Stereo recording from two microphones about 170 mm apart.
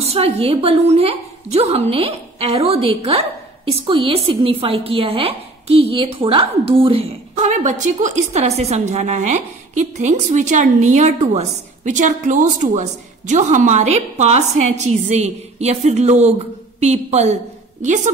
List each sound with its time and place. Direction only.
0.0 s a woman's voice: 35° right (ahead or behind)